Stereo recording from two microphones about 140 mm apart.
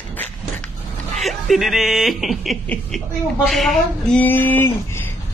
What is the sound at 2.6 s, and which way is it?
Speech, 10° left (ahead or behind).